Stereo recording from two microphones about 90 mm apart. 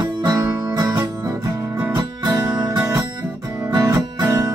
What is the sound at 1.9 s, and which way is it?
Music, 50° right (ahead or behind).